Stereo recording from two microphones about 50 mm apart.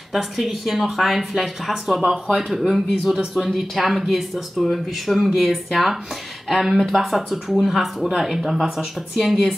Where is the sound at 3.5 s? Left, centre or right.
Centre.